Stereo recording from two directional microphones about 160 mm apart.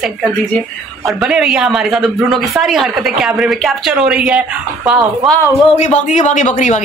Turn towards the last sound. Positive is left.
turn(degrees=50)  # may be behind; listen again after turning